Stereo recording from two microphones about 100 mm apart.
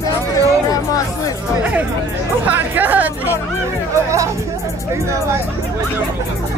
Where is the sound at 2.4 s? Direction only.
15° right (ahead or behind).